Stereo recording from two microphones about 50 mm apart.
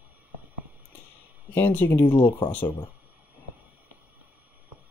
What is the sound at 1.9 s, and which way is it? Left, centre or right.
Speech, left.